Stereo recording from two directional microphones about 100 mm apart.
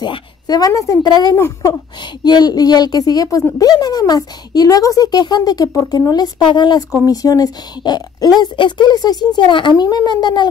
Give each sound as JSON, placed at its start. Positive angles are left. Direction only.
{"t": 0.0, "sound": "speech", "side_deg": 45}
{"t": 2.2, "sound": "speech", "side_deg": 45}
{"t": 7.1, "sound": "speech", "side_deg": 40}